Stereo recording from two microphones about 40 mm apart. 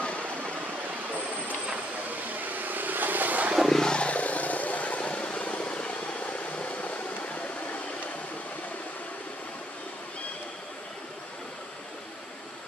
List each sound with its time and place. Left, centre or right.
2.0 s vehicle: right
3.6 s vehicle: centre; by 7.8 s left